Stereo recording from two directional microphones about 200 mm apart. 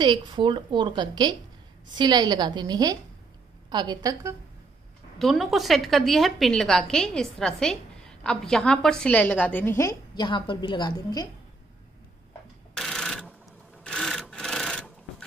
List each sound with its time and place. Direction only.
0.0 s a woman's voice: 20° right (ahead or behind)
5.2 s a woman's voice: centre (ahead or behind); by 11.2 s 20° left (ahead or behind)
12.7 s a sound: centre (ahead or behind)
13.8 s rub: 5° left (ahead or behind)